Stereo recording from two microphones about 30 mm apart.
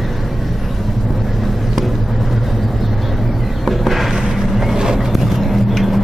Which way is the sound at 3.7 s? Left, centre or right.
Centre.